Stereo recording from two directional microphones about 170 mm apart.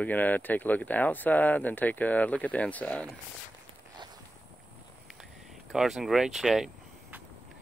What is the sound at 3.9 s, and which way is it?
Walk, 25° right (ahead or behind).